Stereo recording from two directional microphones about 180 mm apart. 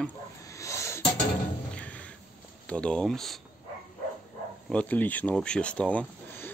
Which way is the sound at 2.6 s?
5° left (ahead or behind).